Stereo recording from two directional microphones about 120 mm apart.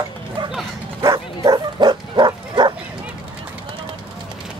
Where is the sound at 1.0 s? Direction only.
30° right (ahead or behind).